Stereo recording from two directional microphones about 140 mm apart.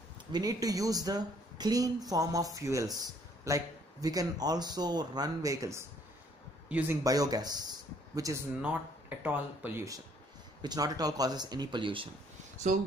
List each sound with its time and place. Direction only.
0.3 s speech: 25° right (ahead or behind); by 7.0 s 10° right (ahead or behind)
7.0 s speech: 25° right (ahead or behind)
9.2 s speech: 10° right (ahead or behind)
10.6 s speech: 30° right (ahead or behind)